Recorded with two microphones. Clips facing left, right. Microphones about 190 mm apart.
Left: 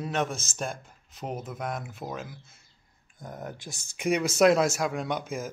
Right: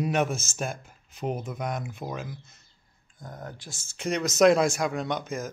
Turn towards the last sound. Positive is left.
turn(degrees=10)  # may be behind; listen again after turning